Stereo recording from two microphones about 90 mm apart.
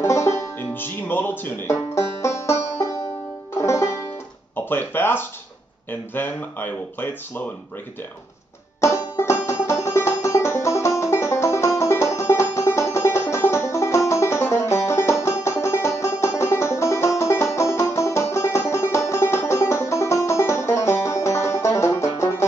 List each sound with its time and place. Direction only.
0.0 s music: 30° left (ahead or behind)
1.7 s banjo: 30° left (ahead or behind)
3.5 s music: 30° left (ahead or behind)
4.6 s speech: 25° left (ahead or behind)
8.8 s banjo: 30° left (ahead or behind)
9.7 s music: 30° left (ahead or behind)